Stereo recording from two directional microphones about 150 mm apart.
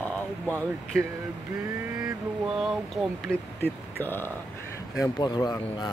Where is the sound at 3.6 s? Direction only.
15° left (ahead or behind).